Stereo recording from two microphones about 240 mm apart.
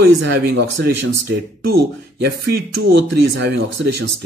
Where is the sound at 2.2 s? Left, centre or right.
Right.